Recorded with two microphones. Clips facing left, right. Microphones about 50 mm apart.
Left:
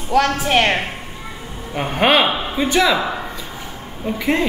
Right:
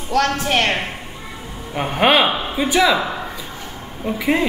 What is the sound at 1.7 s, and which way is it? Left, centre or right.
Speech, centre.